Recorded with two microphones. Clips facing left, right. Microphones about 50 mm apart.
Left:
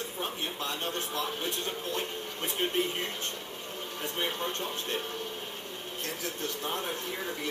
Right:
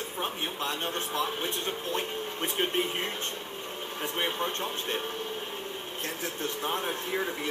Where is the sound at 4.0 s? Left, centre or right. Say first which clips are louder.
Right 3 dB; right.